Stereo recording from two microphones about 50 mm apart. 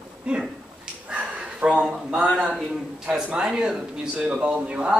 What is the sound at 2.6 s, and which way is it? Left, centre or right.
Speech, centre.